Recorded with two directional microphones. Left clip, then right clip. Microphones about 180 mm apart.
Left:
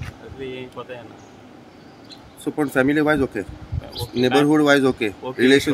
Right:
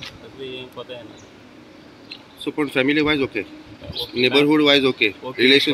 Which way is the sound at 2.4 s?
40° left (ahead or behind).